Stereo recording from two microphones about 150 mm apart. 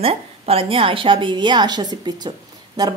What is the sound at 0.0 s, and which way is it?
A woman's voice, 40° right (ahead or behind).